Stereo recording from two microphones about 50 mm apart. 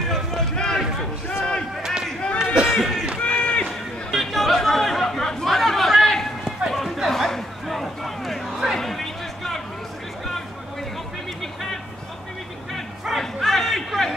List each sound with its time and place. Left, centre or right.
0.1 s run: centre
1.8 s run: centre
2.3 s a sound: centre
2.7 s run: centre
3.2 s run: left
3.6 s chatter: centre
6.7 s a sound: centre
13.2 s chatter: centre